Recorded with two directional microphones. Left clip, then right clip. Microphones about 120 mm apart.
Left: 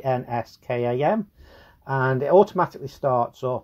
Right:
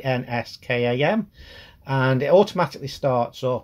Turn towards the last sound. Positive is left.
turn(degrees=40)  # may be behind; listen again after turning